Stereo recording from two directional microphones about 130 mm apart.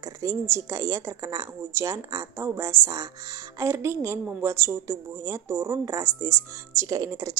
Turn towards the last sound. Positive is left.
turn(degrees=-25)  # may be behind; listen again after turning